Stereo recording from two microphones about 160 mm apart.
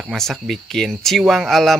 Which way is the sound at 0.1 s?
Centre (ahead or behind).